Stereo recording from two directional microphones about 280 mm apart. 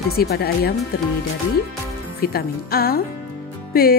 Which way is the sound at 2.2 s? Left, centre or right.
Left.